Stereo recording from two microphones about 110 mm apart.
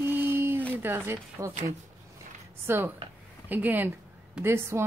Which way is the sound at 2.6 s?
20° right (ahead or behind).